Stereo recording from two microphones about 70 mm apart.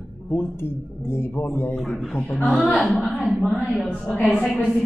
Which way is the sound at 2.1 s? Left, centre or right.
Left.